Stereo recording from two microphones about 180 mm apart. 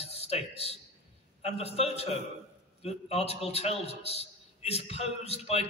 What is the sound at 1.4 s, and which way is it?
A man's voice, 35° left (ahead or behind).